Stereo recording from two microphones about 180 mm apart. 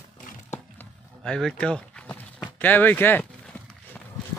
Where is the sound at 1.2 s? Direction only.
5° left (ahead or behind).